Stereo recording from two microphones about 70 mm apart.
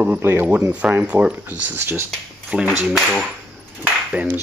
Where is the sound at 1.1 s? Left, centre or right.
Centre.